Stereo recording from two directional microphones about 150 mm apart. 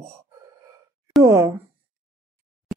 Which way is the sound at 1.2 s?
20° right (ahead or behind).